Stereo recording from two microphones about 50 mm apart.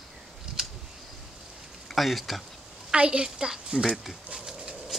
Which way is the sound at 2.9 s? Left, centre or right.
Right.